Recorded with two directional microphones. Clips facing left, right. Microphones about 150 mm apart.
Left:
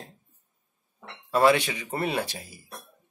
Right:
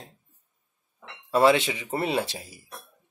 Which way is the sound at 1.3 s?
20° right (ahead or behind).